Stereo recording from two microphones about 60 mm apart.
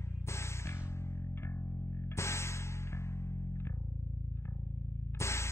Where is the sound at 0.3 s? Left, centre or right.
Left.